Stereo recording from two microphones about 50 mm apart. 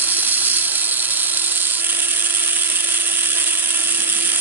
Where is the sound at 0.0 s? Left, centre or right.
Right.